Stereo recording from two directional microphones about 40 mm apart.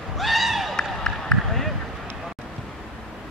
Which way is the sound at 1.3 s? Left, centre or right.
Centre.